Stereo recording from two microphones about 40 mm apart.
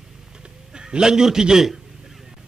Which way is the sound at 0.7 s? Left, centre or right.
Centre.